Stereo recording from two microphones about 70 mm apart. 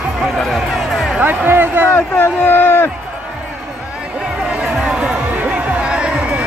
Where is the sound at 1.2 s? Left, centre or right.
Right.